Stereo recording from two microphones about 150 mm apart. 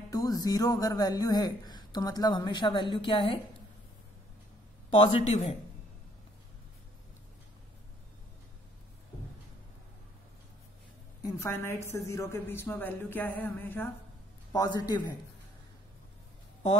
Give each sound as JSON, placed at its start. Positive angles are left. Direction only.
{"t": 0.1, "sound": "speech", "side_deg": 25}
{"t": 4.9, "sound": "speech", "side_deg": 40}
{"t": 11.2, "sound": "a woman's voice", "side_deg": 15}
{"t": 14.5, "sound": "speech", "side_deg": 25}